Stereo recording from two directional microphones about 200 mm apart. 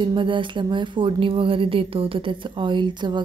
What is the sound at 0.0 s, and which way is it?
A woman's voice, 25° right (ahead or behind).